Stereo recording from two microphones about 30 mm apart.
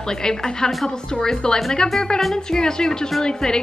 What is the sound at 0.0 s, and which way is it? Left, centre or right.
A woman's voice, left.